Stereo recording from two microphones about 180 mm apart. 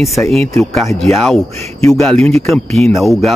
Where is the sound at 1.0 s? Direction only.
Centre (ahead or behind).